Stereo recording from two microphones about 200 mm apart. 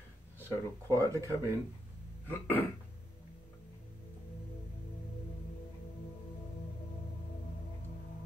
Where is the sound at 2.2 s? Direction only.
10° left (ahead or behind).